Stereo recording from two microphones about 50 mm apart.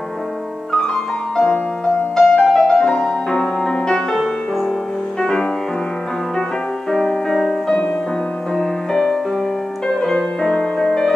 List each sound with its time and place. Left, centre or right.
1.3 s music: centre
6.9 s music: centre